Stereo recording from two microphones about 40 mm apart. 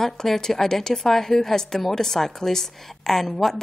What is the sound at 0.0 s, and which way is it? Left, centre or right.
A woman's voice, centre.